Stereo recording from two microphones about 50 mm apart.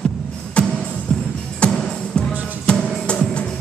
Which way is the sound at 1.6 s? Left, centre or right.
Centre.